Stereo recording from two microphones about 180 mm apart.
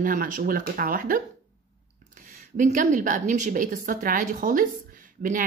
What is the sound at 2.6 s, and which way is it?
Speech, 45° right (ahead or behind).